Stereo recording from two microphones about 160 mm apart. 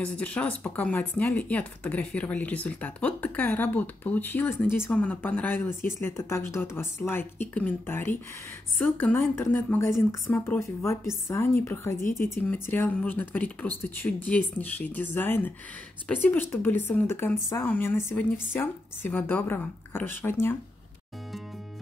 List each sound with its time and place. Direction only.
0.2 s speech: 10° left (ahead or behind)